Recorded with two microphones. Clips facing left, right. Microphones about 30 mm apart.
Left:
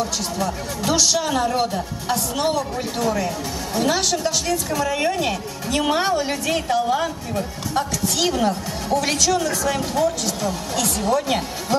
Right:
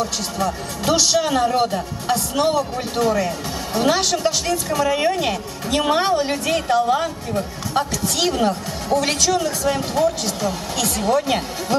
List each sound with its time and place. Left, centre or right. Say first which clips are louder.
0.4 s speech: right 3 dB; centre